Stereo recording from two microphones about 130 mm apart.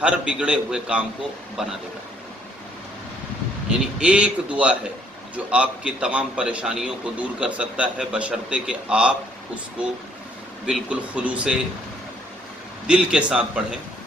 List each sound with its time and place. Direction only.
0.0 s a man's voice: 5° right (ahead or behind)
4.0 s a man's voice: 10° right (ahead or behind)
10.7 s a man's voice: 10° right (ahead or behind)
12.8 s a man's voice: 5° right (ahead or behind)